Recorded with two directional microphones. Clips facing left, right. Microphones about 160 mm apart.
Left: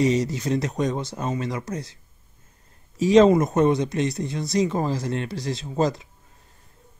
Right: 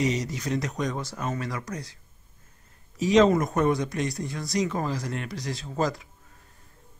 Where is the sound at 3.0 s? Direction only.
30° left (ahead or behind).